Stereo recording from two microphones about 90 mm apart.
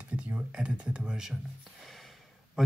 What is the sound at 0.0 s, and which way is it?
Speech, 15° right (ahead or behind).